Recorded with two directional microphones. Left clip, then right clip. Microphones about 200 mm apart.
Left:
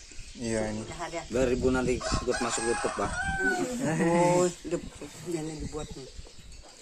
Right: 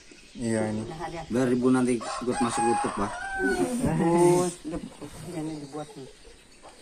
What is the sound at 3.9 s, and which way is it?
Speech, 60° left (ahead or behind).